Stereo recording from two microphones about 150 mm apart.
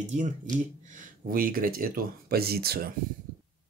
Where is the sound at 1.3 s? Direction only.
75° right (ahead or behind); by 2.9 s 90° right.